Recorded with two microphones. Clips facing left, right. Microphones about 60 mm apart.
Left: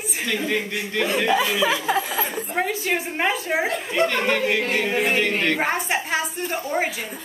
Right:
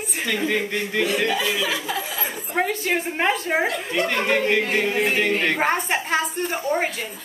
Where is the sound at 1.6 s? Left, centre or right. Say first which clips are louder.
Left 4 dB; left.